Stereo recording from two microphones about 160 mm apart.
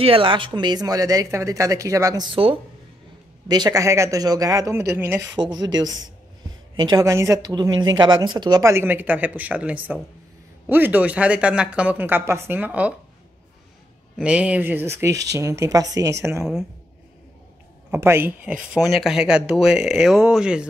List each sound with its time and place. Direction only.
0.0 s speech: 35° right (ahead or behind)
2.3 s speech: 35° right (ahead or behind); by 5.2 s 15° right (ahead or behind)
5.3 s speech: 25° right (ahead or behind); by 12.9 s 10° right (ahead or behind)
14.1 s speech: 5° right (ahead or behind)
17.9 s speech: 15° right (ahead or behind)